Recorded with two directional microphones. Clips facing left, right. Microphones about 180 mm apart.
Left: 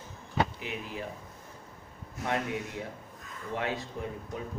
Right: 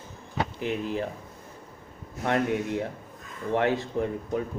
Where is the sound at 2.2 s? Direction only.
60° right (ahead or behind).